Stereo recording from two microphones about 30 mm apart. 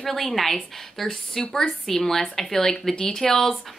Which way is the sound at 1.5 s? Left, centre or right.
Left.